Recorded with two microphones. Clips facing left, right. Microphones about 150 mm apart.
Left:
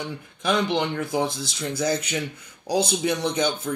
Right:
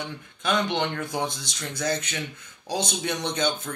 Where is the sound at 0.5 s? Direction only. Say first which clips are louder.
Left 2 dB; 5° left (ahead or behind).